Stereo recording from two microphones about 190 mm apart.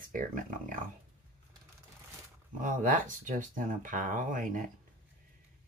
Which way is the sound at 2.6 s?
45° right (ahead or behind).